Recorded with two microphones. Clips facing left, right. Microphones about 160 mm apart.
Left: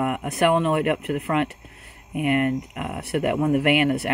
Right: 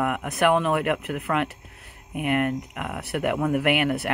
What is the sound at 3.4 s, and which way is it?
Speech, 30° left (ahead or behind).